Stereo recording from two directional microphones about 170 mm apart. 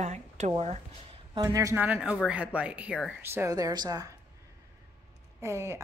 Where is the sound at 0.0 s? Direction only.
40° right (ahead or behind).